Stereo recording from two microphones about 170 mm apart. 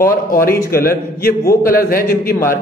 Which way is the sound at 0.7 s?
60° left (ahead or behind).